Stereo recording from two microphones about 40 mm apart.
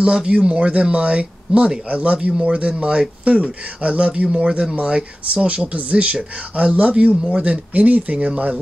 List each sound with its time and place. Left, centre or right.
0.0 s speech: right